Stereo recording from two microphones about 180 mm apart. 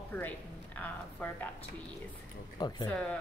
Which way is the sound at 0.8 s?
10° left (ahead or behind).